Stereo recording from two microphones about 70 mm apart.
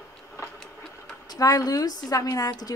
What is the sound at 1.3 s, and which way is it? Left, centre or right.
A woman's voice, left.